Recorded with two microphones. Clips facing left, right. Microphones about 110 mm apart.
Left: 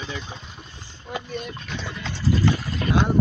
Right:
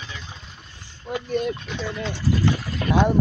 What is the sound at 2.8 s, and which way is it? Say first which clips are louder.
Speech: right 1 dB; 5° right (ahead or behind).